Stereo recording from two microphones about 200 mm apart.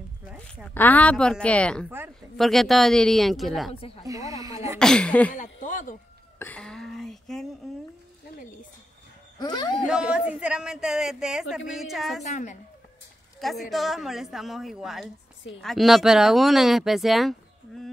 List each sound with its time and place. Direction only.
0.7 s speech: 10° left (ahead or behind)
3.7 s speech: 30° left (ahead or behind)
4.0 s speech: 15° right (ahead or behind)
4.7 s speech: 5° left (ahead or behind)
5.3 s a sound: 40° left (ahead or behind)
6.4 s a sound: 5° left (ahead or behind)
9.4 s speech: 20° left (ahead or behind)
9.8 s speech: 5° right (ahead or behind)
12.2 s a woman's voice: 35° left (ahead or behind)
13.4 s speech: centre (ahead or behind)